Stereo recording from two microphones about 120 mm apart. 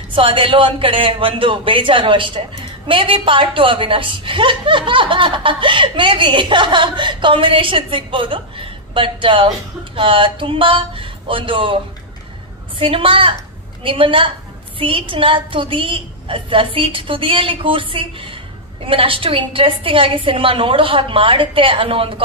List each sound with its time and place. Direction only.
0.1 s a woman's voice: 45° right (ahead or behind)